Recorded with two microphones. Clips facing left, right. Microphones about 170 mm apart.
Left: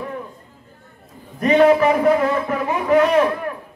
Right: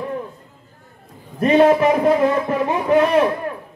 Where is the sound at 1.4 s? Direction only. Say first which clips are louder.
Even; 25° right (ahead or behind).